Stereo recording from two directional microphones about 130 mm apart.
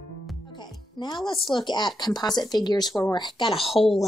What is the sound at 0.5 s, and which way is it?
Music, 35° left (ahead or behind).